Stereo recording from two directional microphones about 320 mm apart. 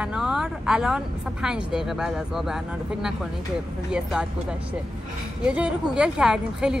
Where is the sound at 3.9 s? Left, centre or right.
Centre.